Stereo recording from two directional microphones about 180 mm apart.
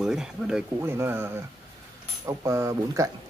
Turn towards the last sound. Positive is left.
turn(degrees=-20)  # may be behind; listen again after turning